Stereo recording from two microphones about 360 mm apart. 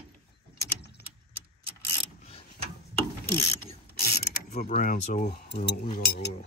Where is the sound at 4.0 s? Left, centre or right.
Left.